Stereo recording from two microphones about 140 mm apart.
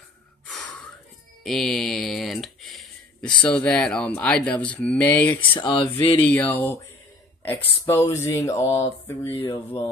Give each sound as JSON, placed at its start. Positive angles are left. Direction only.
{"t": 1.4, "sound": "speech", "side_deg": 0}
{"t": 5.4, "sound": "speech", "side_deg": 35}
{"t": 6.1, "sound": "speech", "side_deg": 10}